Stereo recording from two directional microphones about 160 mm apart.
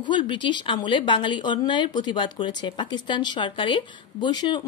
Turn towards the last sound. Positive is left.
turn(degrees=30)  # may be behind; listen again after turning